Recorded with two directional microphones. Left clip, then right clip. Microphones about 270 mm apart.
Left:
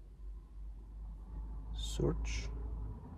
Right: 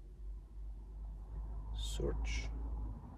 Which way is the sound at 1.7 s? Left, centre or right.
Left.